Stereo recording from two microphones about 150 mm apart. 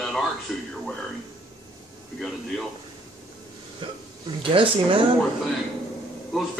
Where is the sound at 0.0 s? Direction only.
Centre (ahead or behind).